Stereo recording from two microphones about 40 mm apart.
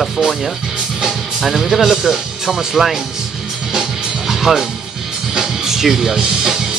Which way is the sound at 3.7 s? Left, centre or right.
Centre.